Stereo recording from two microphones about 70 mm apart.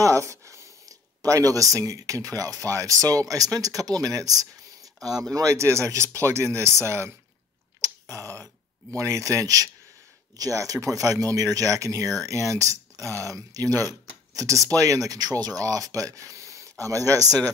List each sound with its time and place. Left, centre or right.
0.0 s speech: right
7.8 s a sound: right
8.9 s speech: right